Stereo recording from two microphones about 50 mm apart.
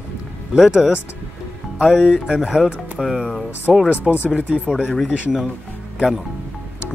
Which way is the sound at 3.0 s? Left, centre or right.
Centre.